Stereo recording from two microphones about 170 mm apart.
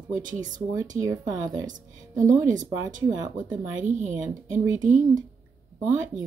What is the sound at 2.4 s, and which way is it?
Speech, 50° right (ahead or behind).